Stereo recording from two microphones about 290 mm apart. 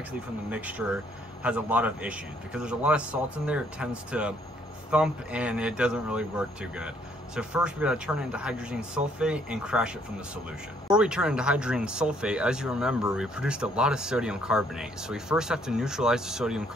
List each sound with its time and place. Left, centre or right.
0.5 s speech: centre